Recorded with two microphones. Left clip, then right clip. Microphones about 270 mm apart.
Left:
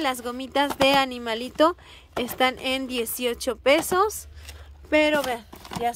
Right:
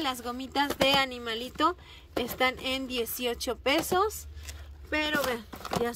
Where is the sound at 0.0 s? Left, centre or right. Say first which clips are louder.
Left 5 dB; centre.